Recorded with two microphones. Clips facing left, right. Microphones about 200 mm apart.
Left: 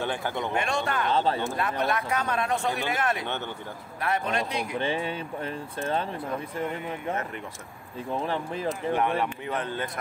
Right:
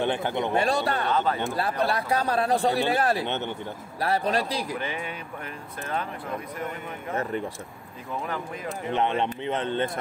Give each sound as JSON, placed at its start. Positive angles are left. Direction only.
{"t": 0.0, "sound": "speech", "side_deg": -20}
{"t": 0.5, "sound": "a man's voice", "side_deg": -35}
{"t": 1.1, "sound": "speech", "side_deg": 30}
{"t": 1.6, "sound": "a man's voice", "side_deg": -35}
{"t": 3.3, "sound": "speech", "side_deg": -20}
{"t": 4.0, "sound": "a man's voice", "side_deg": -35}
{"t": 4.7, "sound": "speech", "side_deg": 30}
{"t": 8.1, "sound": "speech", "side_deg": 30}
{"t": 8.9, "sound": "speech", "side_deg": -25}